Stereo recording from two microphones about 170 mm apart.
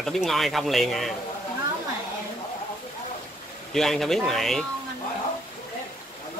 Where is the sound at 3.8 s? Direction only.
Centre (ahead or behind).